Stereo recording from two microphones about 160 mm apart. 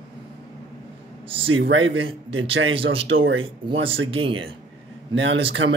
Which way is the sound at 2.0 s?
35° right (ahead or behind).